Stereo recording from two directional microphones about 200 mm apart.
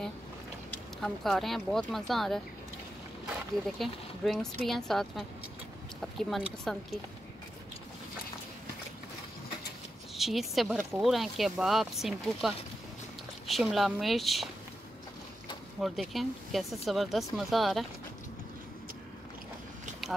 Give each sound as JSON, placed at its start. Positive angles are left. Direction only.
{"t": 1.0, "sound": "speech", "side_deg": 0}
{"t": 3.7, "sound": "speech", "side_deg": 0}
{"t": 10.1, "sound": "speech", "side_deg": 0}
{"t": 15.8, "sound": "speech", "side_deg": 0}